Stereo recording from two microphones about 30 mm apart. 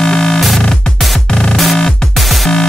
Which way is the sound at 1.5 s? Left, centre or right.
Centre.